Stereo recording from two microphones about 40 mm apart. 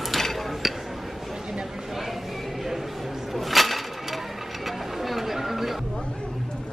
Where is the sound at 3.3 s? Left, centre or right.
Centre.